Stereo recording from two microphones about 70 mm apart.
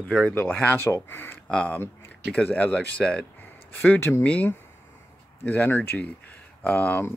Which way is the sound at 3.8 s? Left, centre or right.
Left.